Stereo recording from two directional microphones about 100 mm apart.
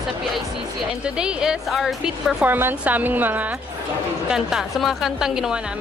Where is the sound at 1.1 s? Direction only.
10° right (ahead or behind).